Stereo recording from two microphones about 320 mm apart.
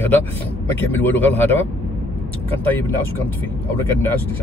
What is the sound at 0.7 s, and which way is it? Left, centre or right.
Speech, centre.